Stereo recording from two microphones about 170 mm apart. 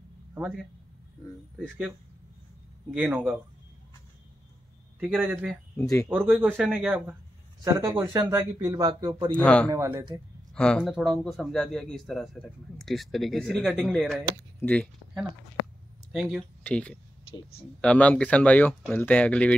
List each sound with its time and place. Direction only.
0.3 s a man's voice: 5° right (ahead or behind)
2.9 s speech: 10° right (ahead or behind)
5.0 s a man's voice: 5° right (ahead or behind); by 9.3 s 25° right (ahead or behind)
9.3 s a man's voice: 5° left (ahead or behind)
9.7 s a man's voice: 20° right (ahead or behind)
10.5 s a man's voice: 5° left (ahead or behind)
16.1 s speech: centre (ahead or behind)
17.3 s speech: 35° left (ahead or behind)
17.7 s speech: 5° left (ahead or behind)